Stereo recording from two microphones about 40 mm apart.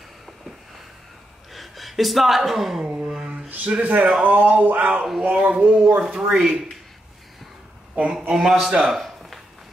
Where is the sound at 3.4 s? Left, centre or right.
Right.